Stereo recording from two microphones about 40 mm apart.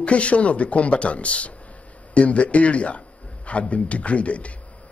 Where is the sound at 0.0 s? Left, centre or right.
Left.